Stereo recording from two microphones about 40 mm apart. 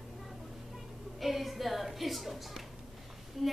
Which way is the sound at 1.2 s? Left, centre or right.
Centre.